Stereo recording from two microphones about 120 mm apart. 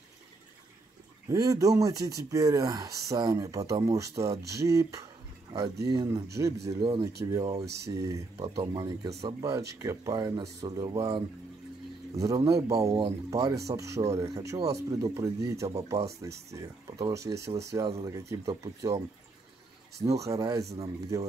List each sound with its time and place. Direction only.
1.3 s speech: 30° right (ahead or behind)
12.2 s speech: 30° right (ahead or behind)
20.0 s speech: 25° right (ahead or behind)